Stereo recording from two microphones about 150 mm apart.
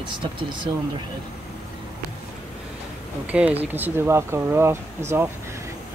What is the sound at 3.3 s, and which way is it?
Speech, 10° right (ahead or behind).